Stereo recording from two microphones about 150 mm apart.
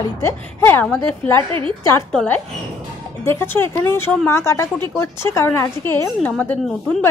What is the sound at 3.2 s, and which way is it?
A woman's voice, 15° left (ahead or behind).